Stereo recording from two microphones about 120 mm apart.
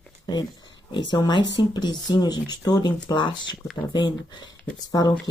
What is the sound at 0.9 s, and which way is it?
Speech, 40° left (ahead or behind).